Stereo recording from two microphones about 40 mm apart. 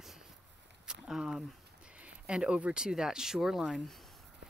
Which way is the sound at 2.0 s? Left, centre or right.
Right.